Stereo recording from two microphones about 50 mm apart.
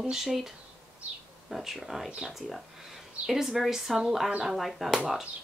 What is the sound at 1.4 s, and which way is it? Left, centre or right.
Speech, centre.